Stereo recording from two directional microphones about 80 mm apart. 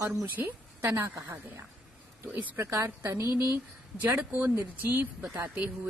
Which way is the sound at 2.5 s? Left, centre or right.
Right.